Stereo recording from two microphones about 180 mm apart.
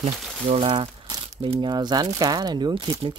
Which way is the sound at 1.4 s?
25° right (ahead or behind).